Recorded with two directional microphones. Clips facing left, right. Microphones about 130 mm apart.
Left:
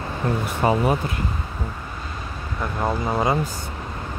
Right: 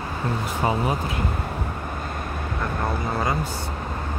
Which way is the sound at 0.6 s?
65° left (ahead or behind).